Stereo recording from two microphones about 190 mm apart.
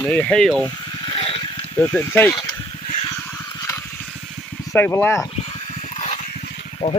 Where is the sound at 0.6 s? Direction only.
25° left (ahead or behind).